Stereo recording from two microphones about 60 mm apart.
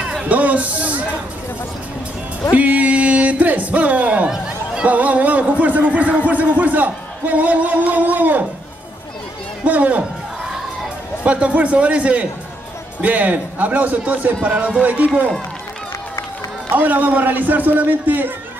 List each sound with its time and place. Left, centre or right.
0.2 s a sound: right
2.5 s speech: right
9.7 s speech: right
11.2 s speech: right
16.7 s a man's voice: right